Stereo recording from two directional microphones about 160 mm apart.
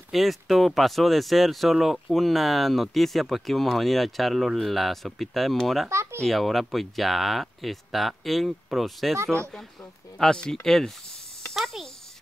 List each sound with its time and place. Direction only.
0.1 s speech: centre (ahead or behind)
5.9 s a sound: 15° right (ahead or behind)
6.2 s speech: centre (ahead or behind)
10.1 s a child's voice: 5° left (ahead or behind)